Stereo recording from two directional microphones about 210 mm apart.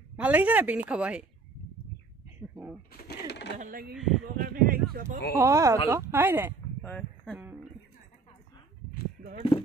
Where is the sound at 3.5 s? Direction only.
45° right (ahead or behind).